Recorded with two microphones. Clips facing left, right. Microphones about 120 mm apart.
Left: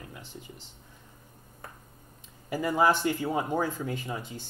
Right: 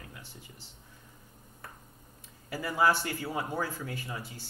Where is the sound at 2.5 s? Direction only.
20° left (ahead or behind).